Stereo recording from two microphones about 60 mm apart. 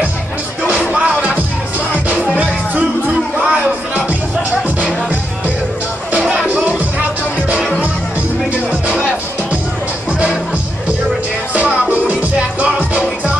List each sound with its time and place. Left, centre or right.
0.9 s music: centre
2.3 s music: right
3.3 s a sound: right
6.5 s music: right
11.5 s music: right